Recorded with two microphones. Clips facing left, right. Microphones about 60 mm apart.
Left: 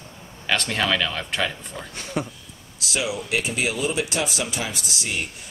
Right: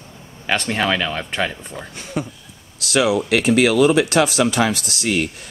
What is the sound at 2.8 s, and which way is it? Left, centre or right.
Speech, right.